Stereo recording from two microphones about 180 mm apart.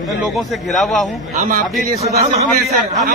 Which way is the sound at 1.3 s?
50° right (ahead or behind).